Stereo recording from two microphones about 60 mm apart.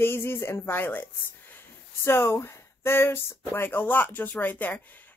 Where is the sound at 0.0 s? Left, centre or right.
Left.